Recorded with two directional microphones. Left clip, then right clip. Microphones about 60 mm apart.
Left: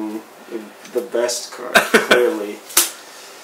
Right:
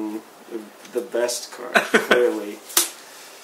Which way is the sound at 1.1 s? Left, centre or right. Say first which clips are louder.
Left 3 dB; right.